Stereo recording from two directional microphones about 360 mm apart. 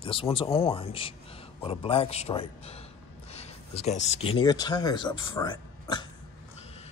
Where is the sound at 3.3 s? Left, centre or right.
Centre.